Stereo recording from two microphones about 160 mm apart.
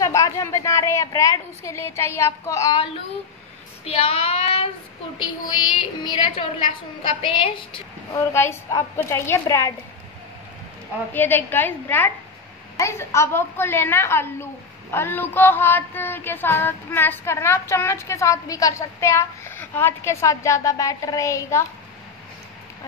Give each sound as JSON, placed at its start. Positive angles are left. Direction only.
{"t": 0.0, "sound": "a woman's voice", "side_deg": 20}
{"t": 4.0, "sound": "a woman's voice", "side_deg": 35}
{"t": 6.0, "sound": "a woman's voice", "side_deg": 30}
{"t": 8.1, "sound": "a woman's voice", "side_deg": 15}
{"t": 11.1, "sound": "a woman's voice", "side_deg": 10}